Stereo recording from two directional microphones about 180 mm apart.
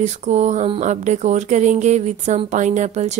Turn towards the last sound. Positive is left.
turn(degrees=-40)  # may be behind; listen again after turning